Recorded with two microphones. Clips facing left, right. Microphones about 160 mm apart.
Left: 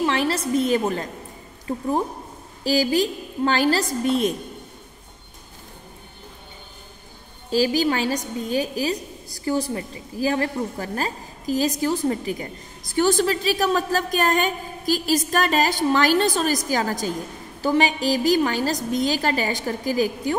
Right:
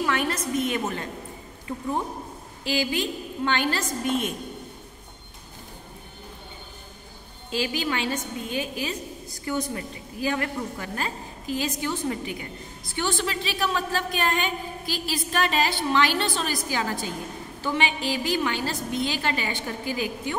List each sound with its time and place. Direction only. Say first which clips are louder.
0.0 s a woman's voice: left 4 dB; 30° left (ahead or behind)
7.4 s a woman's voice: left 8 dB; 35° left (ahead or behind)